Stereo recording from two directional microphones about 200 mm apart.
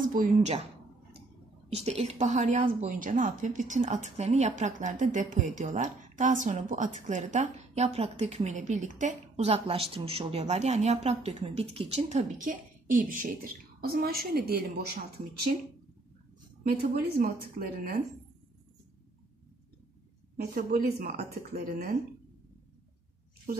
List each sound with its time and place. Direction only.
0.0 s a woman's voice: 40° right (ahead or behind)
1.7 s a woman's voice: 30° right (ahead or behind)
12.4 s a woman's voice: 45° right (ahead or behind)
17.2 s a woman's voice: 45° right (ahead or behind)
20.3 s a woman's voice: 50° right (ahead or behind)